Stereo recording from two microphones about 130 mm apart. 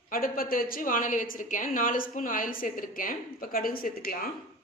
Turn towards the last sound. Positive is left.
turn(degrees=90)